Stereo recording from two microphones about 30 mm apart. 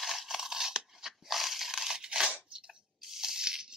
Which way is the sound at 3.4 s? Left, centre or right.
Right.